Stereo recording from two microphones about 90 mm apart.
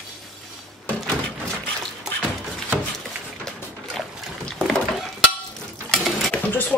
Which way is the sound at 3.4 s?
5° left (ahead or behind).